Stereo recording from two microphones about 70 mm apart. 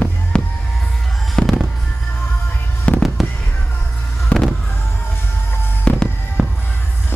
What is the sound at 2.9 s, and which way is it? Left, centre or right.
Fireworks, centre.